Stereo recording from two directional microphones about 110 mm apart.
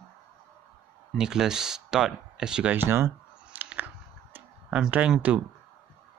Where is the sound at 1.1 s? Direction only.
5° right (ahead or behind).